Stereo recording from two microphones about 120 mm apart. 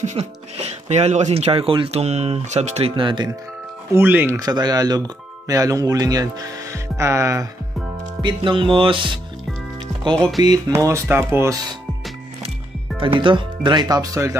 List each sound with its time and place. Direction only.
0.0 s speech: 65° right (ahead or behind)
3.0 s speech: 40° right (ahead or behind)
3.9 s speech: 15° right (ahead or behind)
4.4 s speech: 35° right (ahead or behind)
8.4 s music: 45° right (ahead or behind)
10.4 s speech: 35° right (ahead or behind)
13.0 s speech: 45° right (ahead or behind)